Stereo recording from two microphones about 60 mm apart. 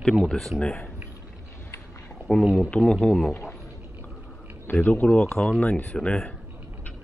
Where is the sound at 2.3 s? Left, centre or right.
Centre.